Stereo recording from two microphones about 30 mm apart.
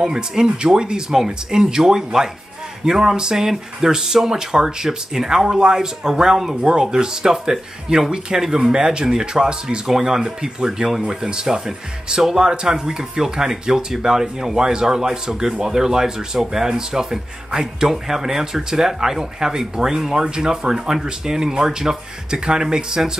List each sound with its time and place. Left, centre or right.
0.0 s speech: right
5.3 s speech: right
9.8 s speech: centre